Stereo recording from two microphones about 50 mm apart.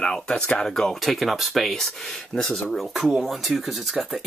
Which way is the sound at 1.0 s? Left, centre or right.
Centre.